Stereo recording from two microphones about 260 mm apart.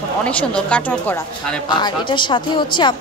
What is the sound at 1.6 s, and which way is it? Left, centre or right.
A woman's voice, centre.